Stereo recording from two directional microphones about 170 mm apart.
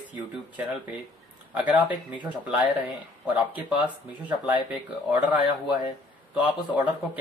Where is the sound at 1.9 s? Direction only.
30° left (ahead or behind).